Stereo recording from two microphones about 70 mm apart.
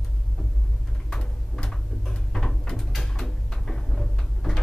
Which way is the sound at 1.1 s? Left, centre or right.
Centre.